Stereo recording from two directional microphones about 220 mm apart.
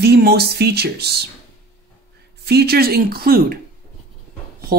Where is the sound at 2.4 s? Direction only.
45° right (ahead or behind).